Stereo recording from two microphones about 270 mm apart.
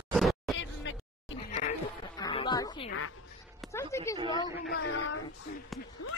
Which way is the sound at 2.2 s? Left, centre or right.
Centre.